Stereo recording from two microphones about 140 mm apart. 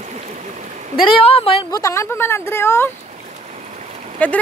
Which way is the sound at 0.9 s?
40° left (ahead or behind).